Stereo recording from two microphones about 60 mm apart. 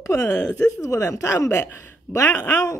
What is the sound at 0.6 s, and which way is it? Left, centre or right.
Speech, left.